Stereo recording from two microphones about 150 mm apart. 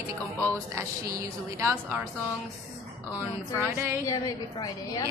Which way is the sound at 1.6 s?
15° right (ahead or behind).